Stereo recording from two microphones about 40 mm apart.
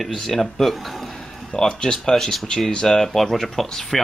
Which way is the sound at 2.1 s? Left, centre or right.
Centre.